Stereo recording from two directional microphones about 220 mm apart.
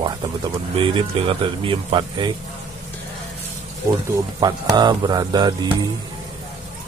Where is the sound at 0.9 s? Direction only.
25° right (ahead or behind).